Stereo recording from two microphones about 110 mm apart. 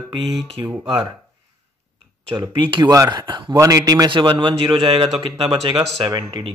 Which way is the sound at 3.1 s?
45° right (ahead or behind).